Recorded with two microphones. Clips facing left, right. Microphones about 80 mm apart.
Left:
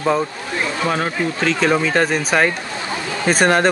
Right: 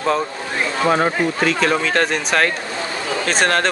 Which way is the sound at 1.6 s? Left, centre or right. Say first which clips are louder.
Left 4 dB; centre.